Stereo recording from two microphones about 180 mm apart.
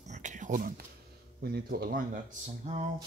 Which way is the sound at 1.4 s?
60° right (ahead or behind).